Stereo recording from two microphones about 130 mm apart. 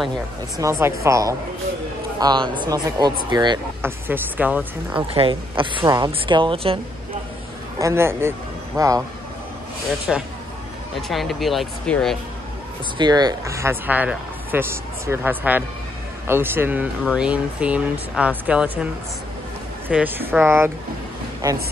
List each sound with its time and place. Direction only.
0.6 s speech: 20° right (ahead or behind)
2.1 s speech: 35° right (ahead or behind)
3.8 s speech: 15° right (ahead or behind)
5.1 s speech: 40° right (ahead or behind)
7.8 s a man's voice: 20° right (ahead or behind)
10.1 s speech: centre (ahead or behind)
12.9 s speech: 35° right (ahead or behind); by 18.9 s 10° right (ahead or behind)
19.9 s speech: 15° right (ahead or behind)